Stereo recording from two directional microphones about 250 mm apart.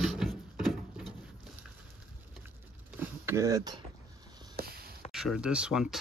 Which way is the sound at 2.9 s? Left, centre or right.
Centre.